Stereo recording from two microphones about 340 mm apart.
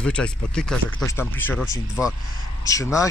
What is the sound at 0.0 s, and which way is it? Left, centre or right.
Speech, centre.